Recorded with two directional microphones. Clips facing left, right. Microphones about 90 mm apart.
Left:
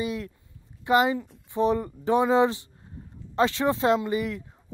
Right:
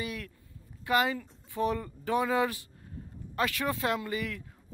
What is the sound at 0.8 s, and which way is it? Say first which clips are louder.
Speech: left 6 dB; 20° left (ahead or behind).